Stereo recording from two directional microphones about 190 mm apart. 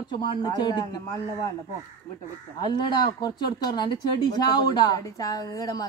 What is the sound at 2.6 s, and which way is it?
Speech, 25° left (ahead or behind).